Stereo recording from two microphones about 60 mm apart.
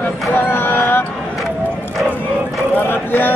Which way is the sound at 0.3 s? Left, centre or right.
Left.